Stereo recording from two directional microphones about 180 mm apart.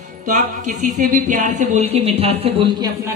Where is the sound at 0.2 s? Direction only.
45° right (ahead or behind); by 2.9 s 25° right (ahead or behind).